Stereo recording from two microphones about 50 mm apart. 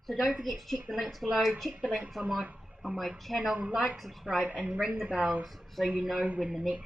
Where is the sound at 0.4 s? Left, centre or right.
Centre.